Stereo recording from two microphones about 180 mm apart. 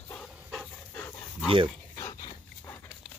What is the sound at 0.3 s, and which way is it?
Dog, 5° right (ahead or behind).